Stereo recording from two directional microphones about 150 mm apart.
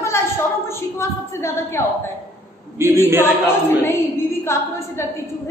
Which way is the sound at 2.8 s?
15° right (ahead or behind).